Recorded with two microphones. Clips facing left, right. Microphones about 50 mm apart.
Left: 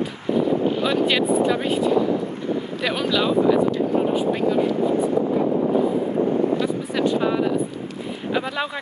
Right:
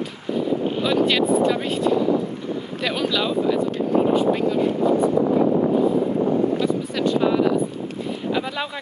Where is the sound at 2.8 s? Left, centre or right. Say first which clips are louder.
Even; centre.